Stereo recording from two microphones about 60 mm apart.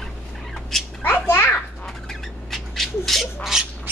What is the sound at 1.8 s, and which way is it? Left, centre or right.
Bird, centre.